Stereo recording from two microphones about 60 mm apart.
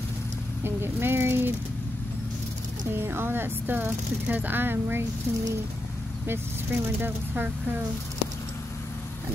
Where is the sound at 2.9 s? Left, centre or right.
Right.